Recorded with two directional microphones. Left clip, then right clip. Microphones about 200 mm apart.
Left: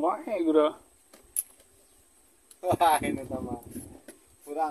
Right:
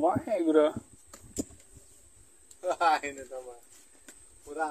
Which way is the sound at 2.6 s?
65° left (ahead or behind).